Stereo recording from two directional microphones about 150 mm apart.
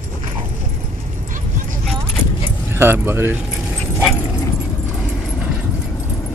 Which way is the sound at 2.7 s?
15° right (ahead or behind).